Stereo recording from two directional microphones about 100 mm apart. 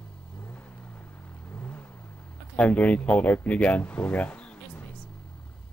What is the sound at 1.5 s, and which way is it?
Vehicle, 15° left (ahead or behind).